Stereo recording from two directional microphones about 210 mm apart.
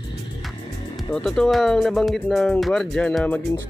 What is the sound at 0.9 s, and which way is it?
Speech, centre (ahead or behind).